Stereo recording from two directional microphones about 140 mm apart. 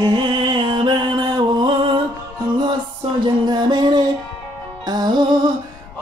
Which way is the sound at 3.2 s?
30° right (ahead or behind).